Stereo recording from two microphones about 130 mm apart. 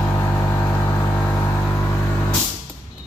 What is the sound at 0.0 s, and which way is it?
Vehicle, 20° left (ahead or behind).